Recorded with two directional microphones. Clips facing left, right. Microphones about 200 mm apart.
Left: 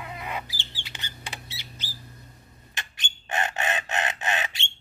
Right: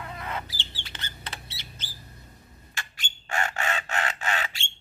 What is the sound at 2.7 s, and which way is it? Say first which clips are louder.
Crow: even; 20° left (ahead or behind).